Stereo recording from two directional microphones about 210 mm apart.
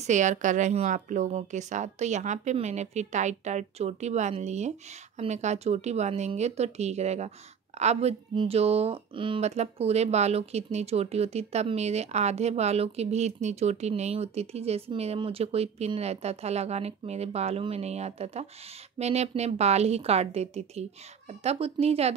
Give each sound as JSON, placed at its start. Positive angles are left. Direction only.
{"t": 0.0, "sound": "speech", "side_deg": -35}